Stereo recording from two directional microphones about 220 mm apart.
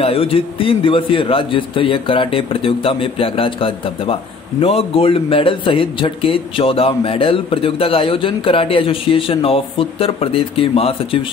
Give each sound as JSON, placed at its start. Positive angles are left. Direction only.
{"t": 0.0, "sound": "a man's voice", "side_deg": 25}